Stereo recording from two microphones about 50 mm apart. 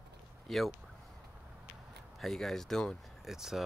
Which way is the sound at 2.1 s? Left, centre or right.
Centre.